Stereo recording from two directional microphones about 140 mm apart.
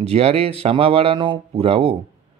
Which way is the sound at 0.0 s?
45° right (ahead or behind).